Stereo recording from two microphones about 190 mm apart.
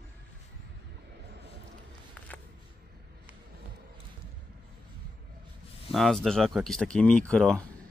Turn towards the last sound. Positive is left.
turn(degrees=5)  # may be behind; listen again after turning